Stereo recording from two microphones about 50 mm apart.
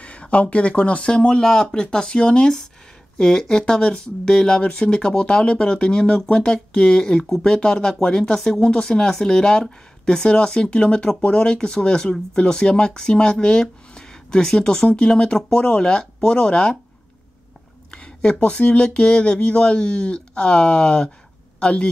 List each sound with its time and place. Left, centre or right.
0.0 s speech: left
17.9 s speech: left